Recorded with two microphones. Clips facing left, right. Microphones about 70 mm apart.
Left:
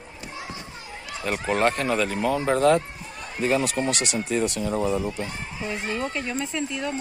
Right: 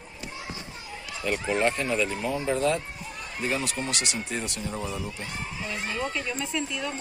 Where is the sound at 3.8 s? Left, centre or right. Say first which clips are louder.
Left 7 dB; left.